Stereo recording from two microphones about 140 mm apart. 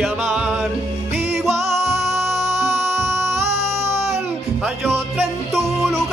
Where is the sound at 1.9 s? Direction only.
20° right (ahead or behind).